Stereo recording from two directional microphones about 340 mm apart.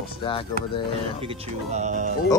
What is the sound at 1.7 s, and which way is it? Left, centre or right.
Speech, centre.